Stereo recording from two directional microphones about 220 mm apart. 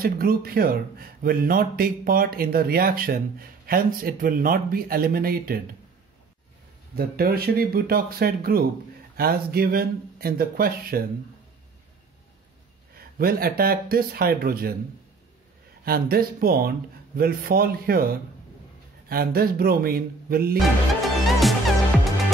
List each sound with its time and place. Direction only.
0.0 s speech: 40° right (ahead or behind)
7.0 s speech: 45° right (ahead or behind)
12.9 s speech: 45° right (ahead or behind)
15.8 s speech: 45° right (ahead or behind)
21.0 s music: centre (ahead or behind)